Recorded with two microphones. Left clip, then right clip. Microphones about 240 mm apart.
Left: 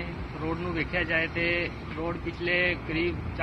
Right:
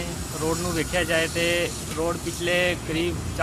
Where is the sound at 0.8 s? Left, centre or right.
Right.